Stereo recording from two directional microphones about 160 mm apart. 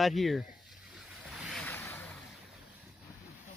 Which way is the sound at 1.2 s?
Centre (ahead or behind).